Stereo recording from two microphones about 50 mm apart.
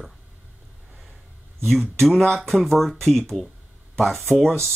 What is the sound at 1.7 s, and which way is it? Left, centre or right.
Speech, centre.